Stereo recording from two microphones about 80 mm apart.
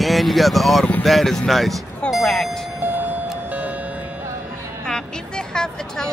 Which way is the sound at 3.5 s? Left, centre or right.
Centre.